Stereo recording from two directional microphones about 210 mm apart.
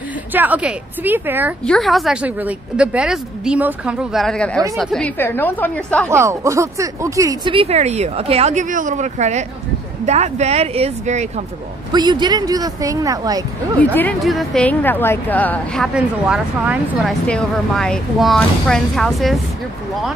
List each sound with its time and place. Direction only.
0.3 s a woman's voice: 10° right (ahead or behind); by 6.0 s 10° left (ahead or behind)
6.0 s speech: 15° right (ahead or behind); by 11.4 s 35° right (ahead or behind)
11.9 s speech: 20° right (ahead or behind)
13.7 s a woman's voice: 5° left (ahead or behind)